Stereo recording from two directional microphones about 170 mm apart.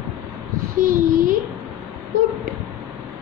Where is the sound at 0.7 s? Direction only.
55° right (ahead or behind).